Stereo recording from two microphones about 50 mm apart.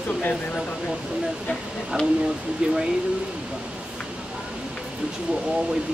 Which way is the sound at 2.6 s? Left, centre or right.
Right.